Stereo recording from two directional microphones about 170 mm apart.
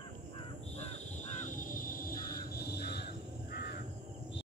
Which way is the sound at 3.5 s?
65° left (ahead or behind).